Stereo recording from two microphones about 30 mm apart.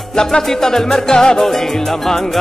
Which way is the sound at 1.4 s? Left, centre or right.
Centre.